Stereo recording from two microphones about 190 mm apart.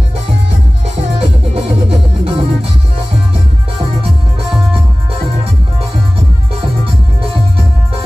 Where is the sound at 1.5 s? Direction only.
30° right (ahead or behind).